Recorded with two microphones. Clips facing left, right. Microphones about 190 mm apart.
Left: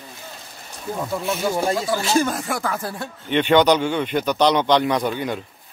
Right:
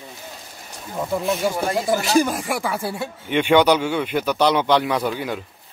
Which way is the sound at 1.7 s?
20° right (ahead or behind).